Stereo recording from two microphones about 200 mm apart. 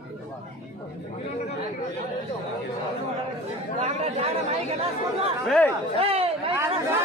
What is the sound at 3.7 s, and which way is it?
Speech, 30° right (ahead or behind).